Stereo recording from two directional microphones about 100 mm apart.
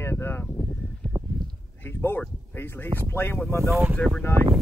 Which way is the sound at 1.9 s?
20° left (ahead or behind).